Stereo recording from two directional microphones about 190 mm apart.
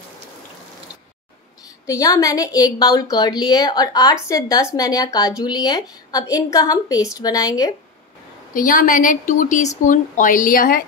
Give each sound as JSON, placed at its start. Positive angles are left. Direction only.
{"t": 1.9, "sound": "a woman's voice", "side_deg": 15}
{"t": 8.5, "sound": "a woman's voice", "side_deg": 45}